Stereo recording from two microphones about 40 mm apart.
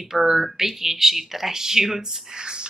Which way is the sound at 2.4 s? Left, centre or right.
Right.